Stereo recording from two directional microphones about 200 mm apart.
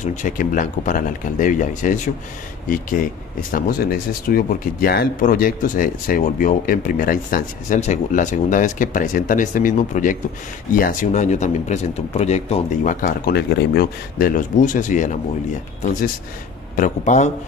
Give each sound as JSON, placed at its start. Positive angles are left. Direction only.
{"t": 0.0, "sound": "speech", "side_deg": 40}
{"t": 4.3, "sound": "speech", "side_deg": 50}
{"t": 13.0, "sound": "speech", "side_deg": 50}